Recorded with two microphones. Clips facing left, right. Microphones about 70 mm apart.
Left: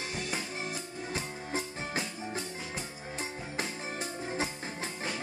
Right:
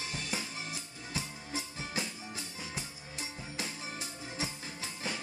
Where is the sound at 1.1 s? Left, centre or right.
Left.